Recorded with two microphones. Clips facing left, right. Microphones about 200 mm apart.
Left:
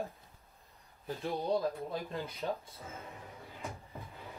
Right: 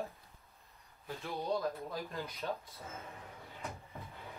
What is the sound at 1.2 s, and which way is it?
Speech, 30° left (ahead or behind).